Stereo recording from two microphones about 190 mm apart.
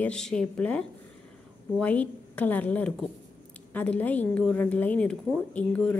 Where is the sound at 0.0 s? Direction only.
5° left (ahead or behind).